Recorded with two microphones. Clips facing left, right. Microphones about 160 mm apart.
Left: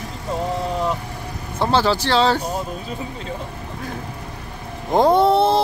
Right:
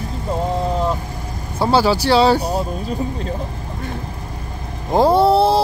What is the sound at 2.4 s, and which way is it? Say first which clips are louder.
Speech: right 4 dB; 40° right (ahead or behind).